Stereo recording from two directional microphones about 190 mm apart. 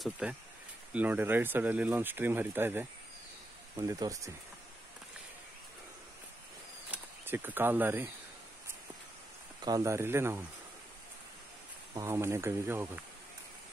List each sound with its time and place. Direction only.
0.0 s speech: 5° right (ahead or behind)
6.9 s speech: 10° right (ahead or behind)
9.6 s speech: 20° right (ahead or behind)
11.9 s speech: 15° right (ahead or behind)